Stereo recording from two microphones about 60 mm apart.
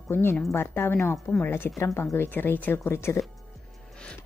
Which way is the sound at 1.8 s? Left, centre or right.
Left.